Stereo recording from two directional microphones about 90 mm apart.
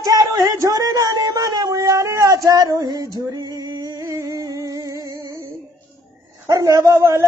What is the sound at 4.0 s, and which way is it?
Music, 35° right (ahead or behind).